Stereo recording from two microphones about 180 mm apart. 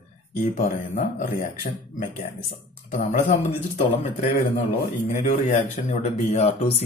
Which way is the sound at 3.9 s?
45° left (ahead or behind).